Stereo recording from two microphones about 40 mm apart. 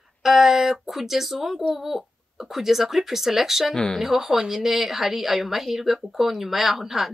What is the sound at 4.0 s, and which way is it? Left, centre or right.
A woman's voice, centre.